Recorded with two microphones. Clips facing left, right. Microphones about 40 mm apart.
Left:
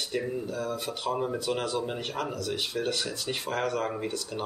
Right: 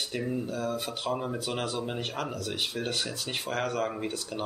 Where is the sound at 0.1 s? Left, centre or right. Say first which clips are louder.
Left 1 dB; centre.